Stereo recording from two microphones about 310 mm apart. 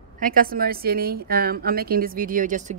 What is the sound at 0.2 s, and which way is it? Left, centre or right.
A woman's voice, right.